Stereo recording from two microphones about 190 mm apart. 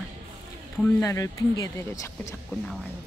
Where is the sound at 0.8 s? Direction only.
15° left (ahead or behind).